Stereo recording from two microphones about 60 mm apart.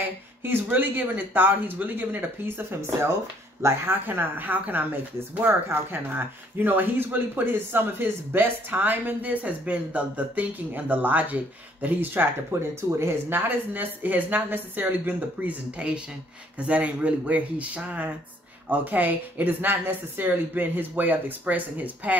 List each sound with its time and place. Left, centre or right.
0.4 s speech: right
5.4 s speech: right
15.8 s speech: centre